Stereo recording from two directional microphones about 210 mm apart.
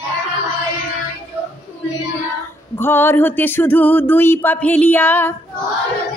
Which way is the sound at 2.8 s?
10° left (ahead or behind).